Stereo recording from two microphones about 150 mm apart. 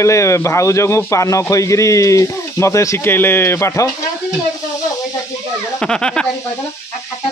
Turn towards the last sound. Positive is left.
turn(degrees=5)  # may be behind; listen again after turning